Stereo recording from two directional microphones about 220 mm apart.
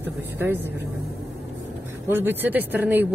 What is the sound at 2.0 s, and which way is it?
Speech, 10° right (ahead or behind).